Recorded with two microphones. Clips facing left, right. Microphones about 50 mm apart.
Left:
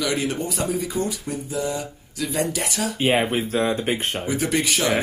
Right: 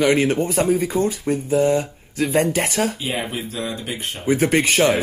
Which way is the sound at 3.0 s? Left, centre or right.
Left.